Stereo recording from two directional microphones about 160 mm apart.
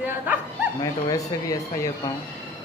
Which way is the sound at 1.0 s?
20° left (ahead or behind).